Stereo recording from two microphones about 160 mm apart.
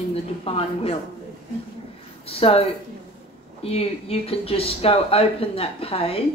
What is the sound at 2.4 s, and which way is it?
Speech, 40° left (ahead or behind).